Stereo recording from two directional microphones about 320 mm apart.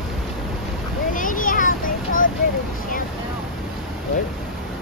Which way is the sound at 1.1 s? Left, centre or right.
Left.